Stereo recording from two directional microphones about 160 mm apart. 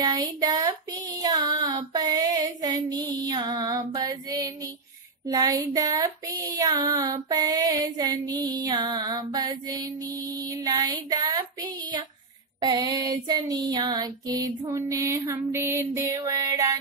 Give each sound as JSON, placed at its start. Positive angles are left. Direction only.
{"t": 0.0, "sound": "child singing", "side_deg": -25}